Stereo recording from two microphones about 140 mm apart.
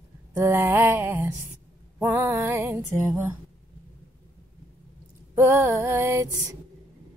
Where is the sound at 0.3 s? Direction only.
15° right (ahead or behind).